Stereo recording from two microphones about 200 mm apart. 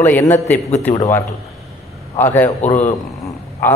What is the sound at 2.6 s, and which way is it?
Speech, 40° left (ahead or behind).